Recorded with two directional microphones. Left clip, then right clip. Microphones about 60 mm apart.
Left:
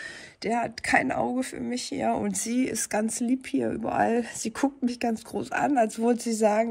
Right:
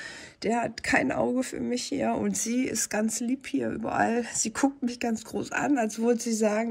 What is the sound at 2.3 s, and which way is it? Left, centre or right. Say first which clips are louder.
Speech: left 1 dB; right.